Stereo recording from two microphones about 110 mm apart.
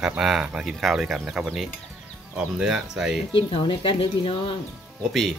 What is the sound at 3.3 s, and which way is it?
Speech, 50° left (ahead or behind).